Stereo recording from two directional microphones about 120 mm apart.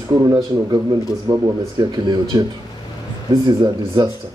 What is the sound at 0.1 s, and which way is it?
A man's voice, 35° right (ahead or behind).